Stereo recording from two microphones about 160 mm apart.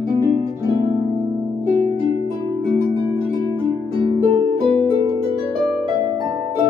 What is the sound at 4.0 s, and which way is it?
Harp, 35° right (ahead or behind).